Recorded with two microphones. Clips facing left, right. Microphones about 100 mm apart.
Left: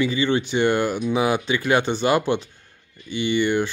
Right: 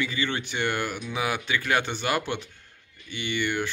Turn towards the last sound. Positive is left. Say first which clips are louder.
# left 8 dB
turn(degrees=25)  # may be behind; listen again after turning